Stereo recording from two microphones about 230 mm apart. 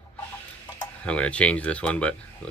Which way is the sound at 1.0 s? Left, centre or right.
Centre.